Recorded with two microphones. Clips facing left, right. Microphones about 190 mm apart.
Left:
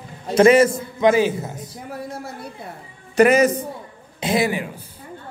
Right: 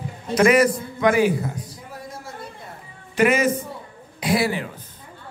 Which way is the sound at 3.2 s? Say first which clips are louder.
Left 4 dB; 40° left (ahead or behind).